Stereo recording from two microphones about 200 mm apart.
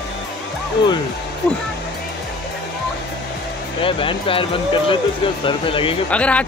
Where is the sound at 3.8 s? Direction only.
25° left (ahead or behind).